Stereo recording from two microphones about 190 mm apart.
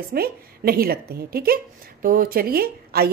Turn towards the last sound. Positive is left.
turn(degrees=-55)  # may be behind; listen again after turning